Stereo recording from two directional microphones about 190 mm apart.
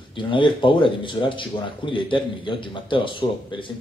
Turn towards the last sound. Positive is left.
turn(degrees=25)  # may be behind; listen again after turning